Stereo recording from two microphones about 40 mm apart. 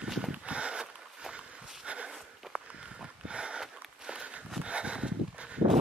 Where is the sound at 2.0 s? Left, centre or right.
Centre.